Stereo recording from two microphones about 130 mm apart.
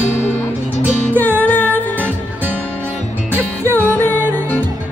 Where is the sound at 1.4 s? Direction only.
10° left (ahead or behind).